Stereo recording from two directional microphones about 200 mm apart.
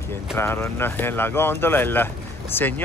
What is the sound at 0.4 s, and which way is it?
Speech, 10° left (ahead or behind).